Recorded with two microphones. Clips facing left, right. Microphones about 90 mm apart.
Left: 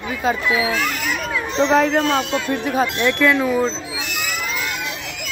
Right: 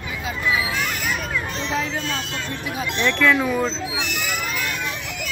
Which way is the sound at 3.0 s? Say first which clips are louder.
Right 1 dB; 5° left (ahead or behind).